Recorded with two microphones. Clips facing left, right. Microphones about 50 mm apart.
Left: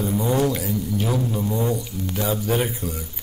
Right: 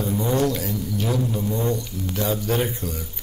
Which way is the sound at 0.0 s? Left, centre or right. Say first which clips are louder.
Left 1 dB; centre.